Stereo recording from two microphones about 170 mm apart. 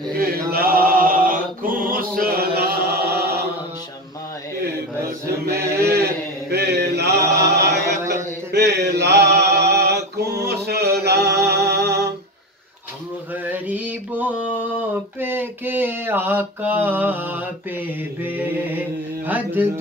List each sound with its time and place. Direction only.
0.2 s mantra: 60° right (ahead or behind)
4.9 s mantra: 15° right (ahead or behind)
5.6 s a sound: 15° right (ahead or behind)
6.5 s a sound: 75° right (ahead or behind)
7.2 s chant: 20° right (ahead or behind)
8.5 s mantra: 70° right (ahead or behind)
13.5 s mantra: 10° right (ahead or behind)